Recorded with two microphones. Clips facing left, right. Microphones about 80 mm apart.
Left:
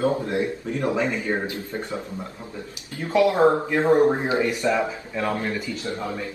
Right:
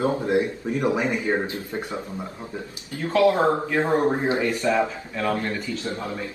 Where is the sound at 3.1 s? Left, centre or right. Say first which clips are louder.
Left 1 dB; centre.